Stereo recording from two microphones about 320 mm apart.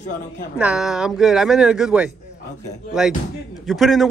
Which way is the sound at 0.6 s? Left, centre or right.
Centre.